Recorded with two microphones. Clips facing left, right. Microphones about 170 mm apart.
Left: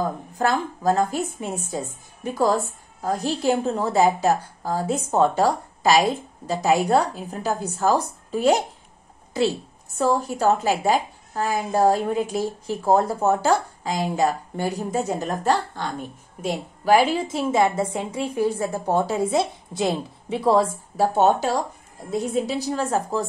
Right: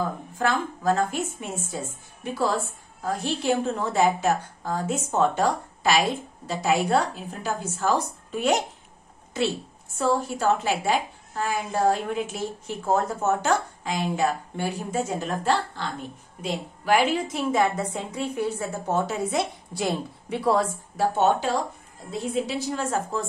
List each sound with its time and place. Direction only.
0.4 s a woman's voice: 40° left (ahead or behind)
9.9 s a woman's voice: 40° left (ahead or behind)
21.0 s a woman's voice: 40° left (ahead or behind)